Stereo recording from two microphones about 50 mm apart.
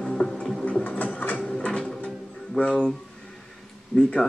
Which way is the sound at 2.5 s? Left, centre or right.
Left.